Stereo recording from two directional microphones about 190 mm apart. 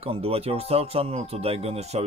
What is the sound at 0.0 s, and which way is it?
Speech, 30° right (ahead or behind).